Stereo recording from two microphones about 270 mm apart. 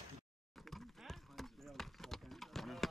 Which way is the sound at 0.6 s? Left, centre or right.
Centre.